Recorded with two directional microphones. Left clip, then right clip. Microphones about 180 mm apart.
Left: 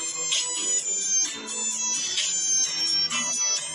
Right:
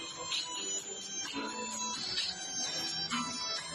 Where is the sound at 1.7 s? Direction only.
45° left (ahead or behind).